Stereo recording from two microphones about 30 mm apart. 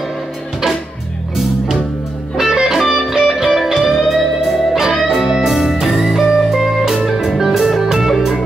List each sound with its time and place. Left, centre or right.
1.3 s music: centre
2.5 s music: right
2.8 s music: centre
5.5 s music: centre